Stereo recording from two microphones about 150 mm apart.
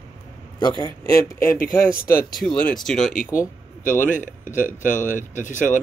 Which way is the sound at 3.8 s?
60° left (ahead or behind).